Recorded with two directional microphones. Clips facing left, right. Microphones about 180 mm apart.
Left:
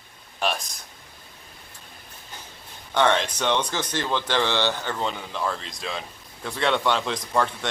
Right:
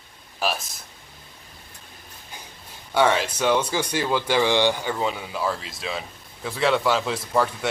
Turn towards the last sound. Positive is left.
turn(degrees=-5)  # may be behind; listen again after turning